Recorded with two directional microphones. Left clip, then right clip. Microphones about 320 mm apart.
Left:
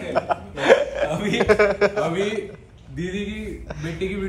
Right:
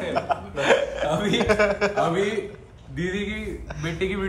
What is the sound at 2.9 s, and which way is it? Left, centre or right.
A man's voice, centre.